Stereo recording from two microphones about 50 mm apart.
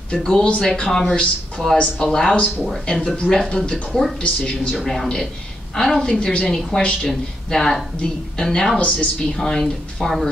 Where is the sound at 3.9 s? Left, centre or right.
Centre.